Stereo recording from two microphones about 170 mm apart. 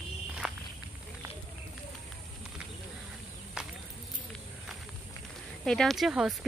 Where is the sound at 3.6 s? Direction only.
5° right (ahead or behind).